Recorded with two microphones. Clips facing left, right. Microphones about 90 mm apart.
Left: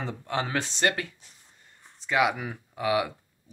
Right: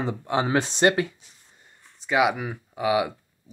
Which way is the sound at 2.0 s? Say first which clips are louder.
Right 3 dB; 10° right (ahead or behind).